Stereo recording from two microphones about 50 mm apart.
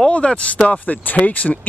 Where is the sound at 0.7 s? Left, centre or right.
Left.